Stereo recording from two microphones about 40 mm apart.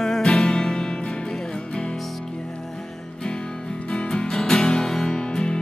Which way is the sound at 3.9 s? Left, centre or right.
Left.